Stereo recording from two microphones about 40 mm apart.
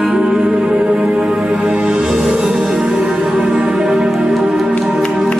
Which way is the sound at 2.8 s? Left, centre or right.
Centre.